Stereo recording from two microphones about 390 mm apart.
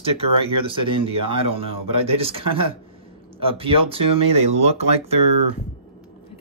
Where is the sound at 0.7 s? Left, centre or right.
Centre.